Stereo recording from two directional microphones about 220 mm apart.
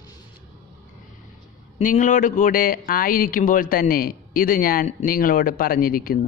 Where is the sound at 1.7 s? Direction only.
35° left (ahead or behind).